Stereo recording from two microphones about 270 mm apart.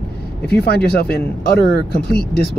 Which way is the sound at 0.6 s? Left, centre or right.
Left.